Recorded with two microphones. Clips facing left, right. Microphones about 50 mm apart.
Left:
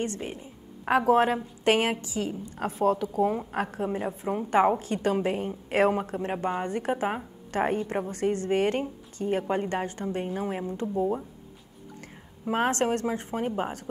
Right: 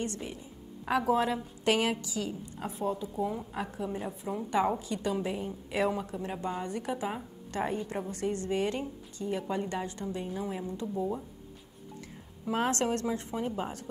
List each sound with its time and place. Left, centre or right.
0.0 s a woman's voice: left
2.5 s a woman's voice: left
3.3 s a woman's voice: left
12.4 s a woman's voice: left